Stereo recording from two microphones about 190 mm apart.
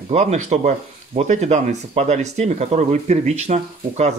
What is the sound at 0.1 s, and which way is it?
Speech, 35° right (ahead or behind).